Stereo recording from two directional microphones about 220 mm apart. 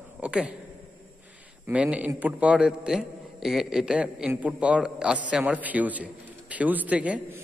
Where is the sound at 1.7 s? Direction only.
5° right (ahead or behind).